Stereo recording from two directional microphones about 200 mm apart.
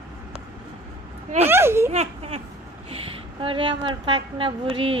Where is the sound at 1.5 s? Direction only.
10° right (ahead or behind).